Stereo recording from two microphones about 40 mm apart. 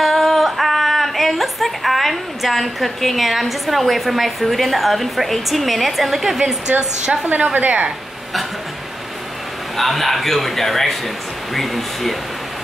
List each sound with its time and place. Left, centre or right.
0.0 s a woman's voice: centre
6.7 s a woman's voice: right
9.8 s speech: centre